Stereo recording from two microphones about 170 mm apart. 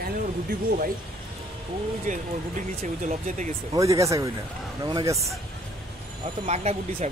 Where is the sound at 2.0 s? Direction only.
45° right (ahead or behind).